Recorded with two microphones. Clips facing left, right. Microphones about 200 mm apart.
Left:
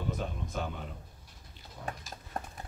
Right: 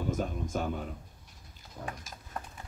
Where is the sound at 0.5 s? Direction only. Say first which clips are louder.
Right 4 dB; 45° right (ahead or behind).